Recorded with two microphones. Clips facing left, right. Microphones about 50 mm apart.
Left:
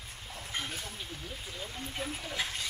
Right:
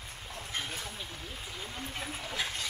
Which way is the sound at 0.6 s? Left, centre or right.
Centre.